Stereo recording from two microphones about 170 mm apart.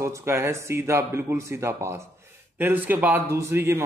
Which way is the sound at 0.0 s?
15° right (ahead or behind).